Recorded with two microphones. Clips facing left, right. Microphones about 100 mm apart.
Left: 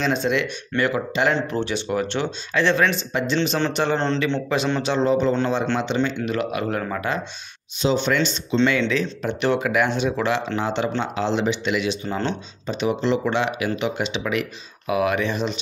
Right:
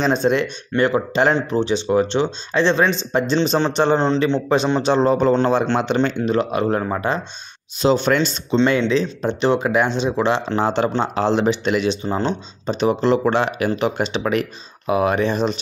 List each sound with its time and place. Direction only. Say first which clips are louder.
0.0 s speech: right 4 dB; 40° right (ahead or behind)
1.5 s a man's voice: right 6 dB; 20° right (ahead or behind); by 6.0 s 50° right (ahead or behind)
6.2 s speech: right 5 dB; 30° right (ahead or behind)
7.8 s a man's voice: right 4 dB; 45° right (ahead or behind)
8.6 s speech: right 4 dB; 30° right (ahead or behind)
10.5 s a man's voice: right 4 dB; 45° right (ahead or behind)